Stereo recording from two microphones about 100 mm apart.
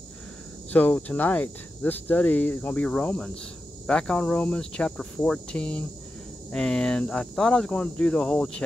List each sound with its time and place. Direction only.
0.7 s speech: 15° left (ahead or behind)